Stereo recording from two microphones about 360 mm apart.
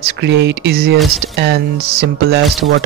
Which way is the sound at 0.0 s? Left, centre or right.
Right.